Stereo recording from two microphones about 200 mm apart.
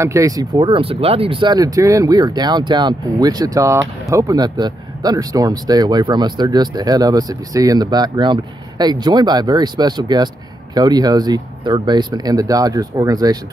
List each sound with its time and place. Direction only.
0.0 s speech: 15° right (ahead or behind)